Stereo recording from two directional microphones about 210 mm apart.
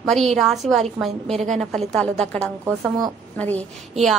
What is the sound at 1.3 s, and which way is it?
Speech, 35° right (ahead or behind).